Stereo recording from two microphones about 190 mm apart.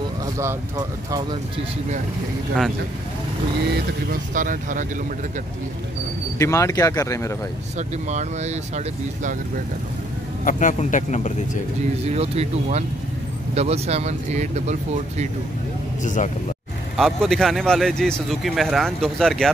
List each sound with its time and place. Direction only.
0.4 s speech: 15° right (ahead or behind)
3.7 s speech: 45° right (ahead or behind)
6.3 s speech: 15° left (ahead or behind)
7.7 s speech: 35° right (ahead or behind)
10.4 s speech: 40° left (ahead or behind)
12.1 s speech: 35° right (ahead or behind)
16.0 s speech: 40° left (ahead or behind)
16.9 s a man's voice: centre (ahead or behind)